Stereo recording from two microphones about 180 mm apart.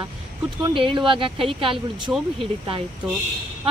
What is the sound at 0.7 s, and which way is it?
Speech, 30° right (ahead or behind).